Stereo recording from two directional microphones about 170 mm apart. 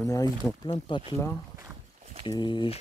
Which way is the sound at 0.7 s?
30° left (ahead or behind).